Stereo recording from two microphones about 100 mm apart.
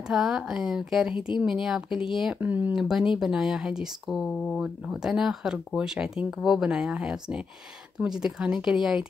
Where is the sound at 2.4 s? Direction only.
20° right (ahead or behind).